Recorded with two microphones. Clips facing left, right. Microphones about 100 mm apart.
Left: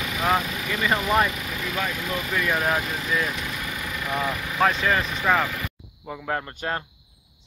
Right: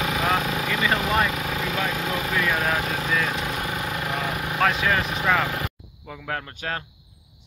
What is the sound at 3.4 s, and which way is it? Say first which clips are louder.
Vehicle: right 4 dB; 50° right (ahead or behind).